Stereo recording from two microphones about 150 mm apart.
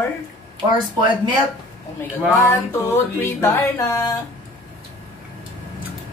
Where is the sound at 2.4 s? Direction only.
20° left (ahead or behind).